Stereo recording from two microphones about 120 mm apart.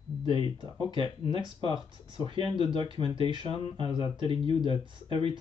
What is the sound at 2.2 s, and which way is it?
Speech, 40° right (ahead or behind).